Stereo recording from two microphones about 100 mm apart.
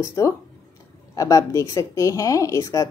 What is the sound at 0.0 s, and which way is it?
A woman's voice, 30° left (ahead or behind).